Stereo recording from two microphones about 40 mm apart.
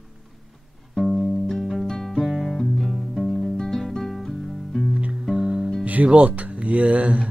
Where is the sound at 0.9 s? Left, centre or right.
Centre.